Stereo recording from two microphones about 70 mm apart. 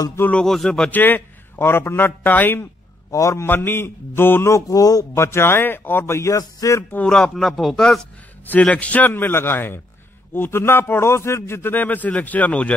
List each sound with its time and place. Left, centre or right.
0.3 s speech: centre
0.9 s a man's voice: left
3.1 s a man's voice: left
3.4 s a man's voice: left
5.1 s a man's voice: left
7.1 s speech: centre
8.5 s a man's voice: centre